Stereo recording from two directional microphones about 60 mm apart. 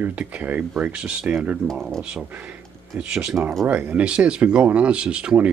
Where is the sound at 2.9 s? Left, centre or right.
Centre.